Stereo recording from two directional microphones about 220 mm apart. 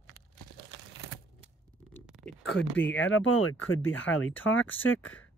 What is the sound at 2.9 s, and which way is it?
Speech, 65° left (ahead or behind).